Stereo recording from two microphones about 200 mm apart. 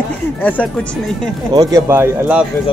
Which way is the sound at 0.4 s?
10° left (ahead or behind).